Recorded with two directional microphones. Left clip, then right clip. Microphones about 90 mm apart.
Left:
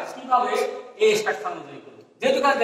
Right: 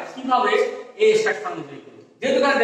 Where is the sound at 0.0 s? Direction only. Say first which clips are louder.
Right 2 dB; 25° right (ahead or behind).